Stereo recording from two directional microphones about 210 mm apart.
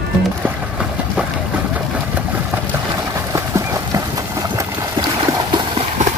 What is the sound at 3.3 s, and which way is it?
Horse, 15° right (ahead or behind).